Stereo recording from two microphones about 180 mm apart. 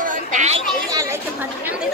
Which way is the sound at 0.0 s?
45° right (ahead or behind).